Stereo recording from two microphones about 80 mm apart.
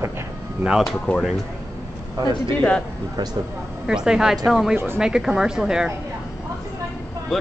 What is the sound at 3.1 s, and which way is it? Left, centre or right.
Speech, right.